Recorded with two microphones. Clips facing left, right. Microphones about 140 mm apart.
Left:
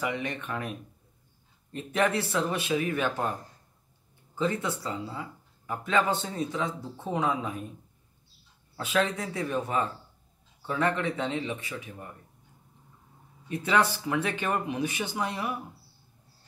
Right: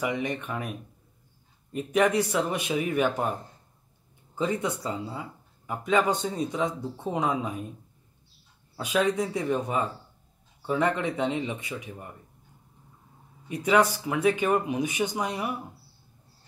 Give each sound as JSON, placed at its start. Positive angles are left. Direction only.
{"t": 0.0, "sound": "speech", "side_deg": -15}
{"t": 1.7, "sound": "speech", "side_deg": -10}
{"t": 4.4, "sound": "speech", "side_deg": -15}
{"t": 8.7, "sound": "speech", "side_deg": -15}
{"t": 13.5, "sound": "speech", "side_deg": -15}